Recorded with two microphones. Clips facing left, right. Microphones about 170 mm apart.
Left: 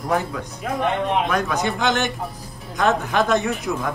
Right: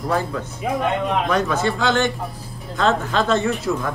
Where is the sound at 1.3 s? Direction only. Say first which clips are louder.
Right 2 dB; 15° left (ahead or behind).